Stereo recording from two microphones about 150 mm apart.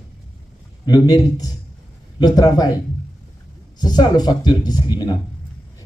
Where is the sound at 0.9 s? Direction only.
25° left (ahead or behind).